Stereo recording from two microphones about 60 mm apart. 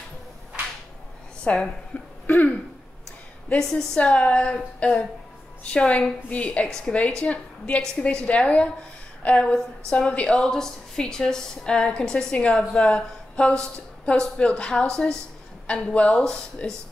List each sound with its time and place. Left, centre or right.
1.4 s a woman's voice: centre
2.2 s cough: left
3.5 s speech: left
6.7 s a woman's voice: centre
16.3 s a woman's voice: centre